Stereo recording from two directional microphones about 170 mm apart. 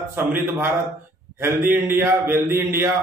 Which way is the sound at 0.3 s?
15° right (ahead or behind).